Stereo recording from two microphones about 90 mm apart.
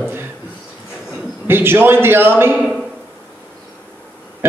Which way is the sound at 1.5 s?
25° right (ahead or behind).